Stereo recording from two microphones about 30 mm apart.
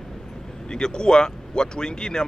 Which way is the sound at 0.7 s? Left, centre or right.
Left.